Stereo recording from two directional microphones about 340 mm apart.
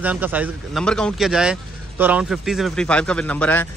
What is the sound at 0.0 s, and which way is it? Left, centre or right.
Speech, centre.